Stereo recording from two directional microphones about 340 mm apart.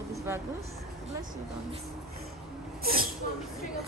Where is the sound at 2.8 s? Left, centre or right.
Right.